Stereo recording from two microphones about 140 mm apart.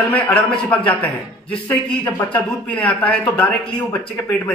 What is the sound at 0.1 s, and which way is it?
A man's voice, 10° left (ahead or behind).